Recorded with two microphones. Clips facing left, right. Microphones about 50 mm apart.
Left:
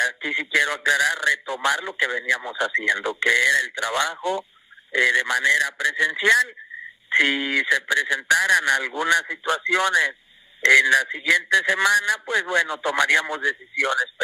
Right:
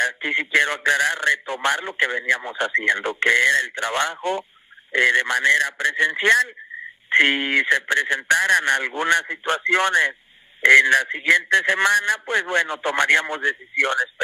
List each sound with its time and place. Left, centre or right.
0.0 s a man's voice: right